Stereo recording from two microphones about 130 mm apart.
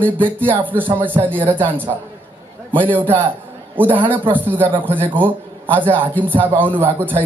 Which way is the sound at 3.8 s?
15° right (ahead or behind).